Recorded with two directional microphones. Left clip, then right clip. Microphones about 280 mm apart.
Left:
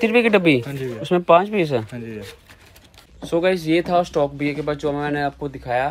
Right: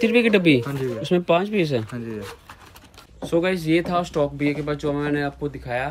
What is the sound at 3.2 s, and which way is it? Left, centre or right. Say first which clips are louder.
Speech: left 3 dB; centre.